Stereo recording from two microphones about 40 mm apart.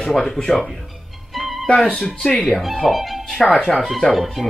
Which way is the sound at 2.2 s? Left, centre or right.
Left.